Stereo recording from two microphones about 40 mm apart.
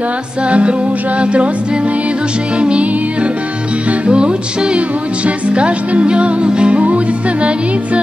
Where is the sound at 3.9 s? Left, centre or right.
Right.